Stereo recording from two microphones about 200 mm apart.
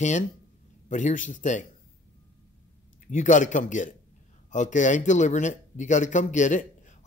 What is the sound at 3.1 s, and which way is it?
Speech, 40° left (ahead or behind).